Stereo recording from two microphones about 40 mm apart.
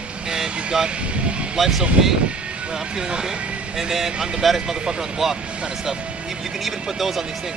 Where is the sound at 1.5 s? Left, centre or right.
Centre.